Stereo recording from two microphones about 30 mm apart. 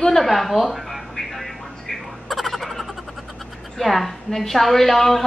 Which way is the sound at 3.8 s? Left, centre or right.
Centre.